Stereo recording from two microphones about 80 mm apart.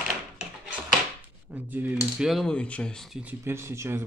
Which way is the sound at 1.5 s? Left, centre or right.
Right.